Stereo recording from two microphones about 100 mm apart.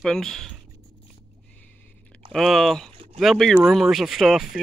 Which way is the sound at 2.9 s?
75° right (ahead or behind).